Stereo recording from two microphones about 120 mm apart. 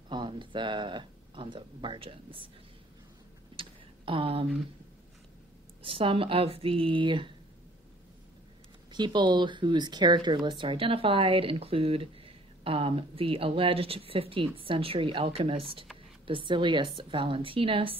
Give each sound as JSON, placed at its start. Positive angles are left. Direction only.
{"t": 0.1, "sound": "speech", "side_deg": -40}
{"t": 3.5, "sound": "tick", "side_deg": -50}
{"t": 5.8, "sound": "speech", "side_deg": -45}
{"t": 8.9, "sound": "speech", "side_deg": -40}